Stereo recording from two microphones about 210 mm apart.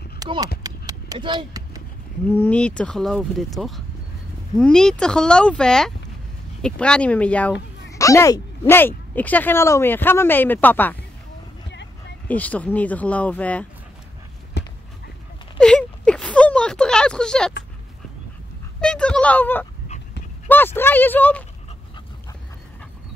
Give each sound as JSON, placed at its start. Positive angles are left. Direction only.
{"t": 0.2, "sound": "speech", "side_deg": -20}
{"t": 0.7, "sound": "a sound", "side_deg": -15}
{"t": 2.2, "sound": "speech", "side_deg": 10}
{"t": 12.3, "sound": "speech", "side_deg": 5}
{"t": 14.6, "sound": "horse", "side_deg": 55}
{"t": 15.6, "sound": "a sound", "side_deg": 5}
{"t": 18.8, "sound": "speech", "side_deg": 5}